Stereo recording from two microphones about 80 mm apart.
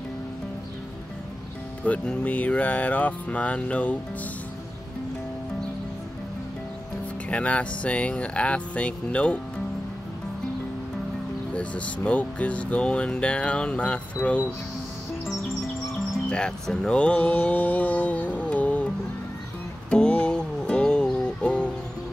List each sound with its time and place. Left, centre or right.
1.9 s speech: centre
7.2 s speech: centre
11.5 s speech: centre
16.3 s speech: centre
19.9 s music: centre